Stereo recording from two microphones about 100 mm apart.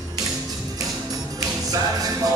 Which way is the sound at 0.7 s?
35° right (ahead or behind).